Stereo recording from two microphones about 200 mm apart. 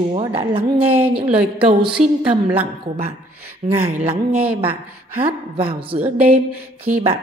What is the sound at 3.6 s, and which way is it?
Speech, 35° right (ahead or behind).